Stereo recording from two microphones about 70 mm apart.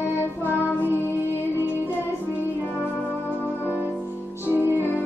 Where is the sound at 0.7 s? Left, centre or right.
Right.